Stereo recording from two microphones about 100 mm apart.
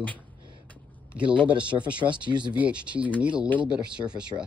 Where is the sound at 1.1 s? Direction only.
10° right (ahead or behind).